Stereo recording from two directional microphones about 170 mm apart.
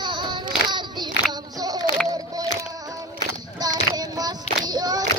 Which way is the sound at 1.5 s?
20° right (ahead or behind).